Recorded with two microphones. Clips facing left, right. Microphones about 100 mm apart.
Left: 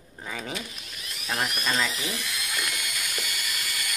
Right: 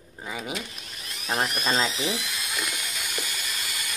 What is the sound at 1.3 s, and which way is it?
Speech, 30° right (ahead or behind).